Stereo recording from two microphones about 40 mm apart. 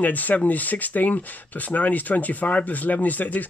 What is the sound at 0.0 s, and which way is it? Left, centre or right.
Speech, left.